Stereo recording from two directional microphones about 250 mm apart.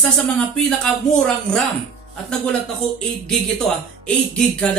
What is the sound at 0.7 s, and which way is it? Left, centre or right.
Speech, centre.